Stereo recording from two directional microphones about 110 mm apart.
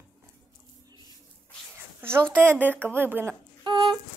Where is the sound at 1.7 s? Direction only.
20° right (ahead or behind).